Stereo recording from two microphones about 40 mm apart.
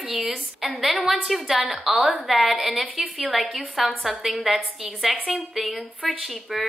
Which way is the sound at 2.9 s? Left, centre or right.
Centre.